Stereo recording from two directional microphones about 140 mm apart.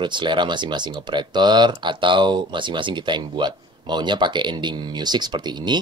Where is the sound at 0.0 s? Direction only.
35° right (ahead or behind).